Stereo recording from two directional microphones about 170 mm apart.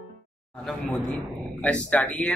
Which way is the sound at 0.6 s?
5° left (ahead or behind).